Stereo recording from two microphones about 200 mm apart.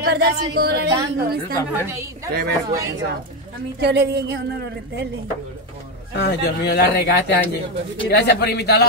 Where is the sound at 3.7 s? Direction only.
55° right (ahead or behind).